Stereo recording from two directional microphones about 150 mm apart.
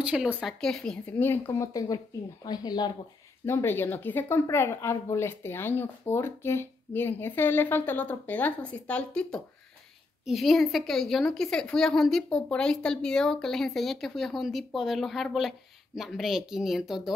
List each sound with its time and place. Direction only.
0.0 s speech: 5° right (ahead or behind); by 2.9 s 30° left (ahead or behind)
3.4 s a woman's voice: 15° left (ahead or behind); by 17.1 s 5° right (ahead or behind)